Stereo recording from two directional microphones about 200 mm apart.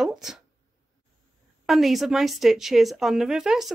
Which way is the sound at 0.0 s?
Centre (ahead or behind).